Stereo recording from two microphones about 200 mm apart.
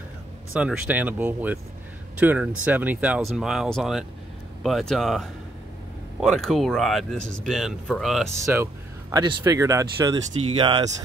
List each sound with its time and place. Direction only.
0.5 s speech: 5° right (ahead or behind)
8.5 s speech: 10° right (ahead or behind)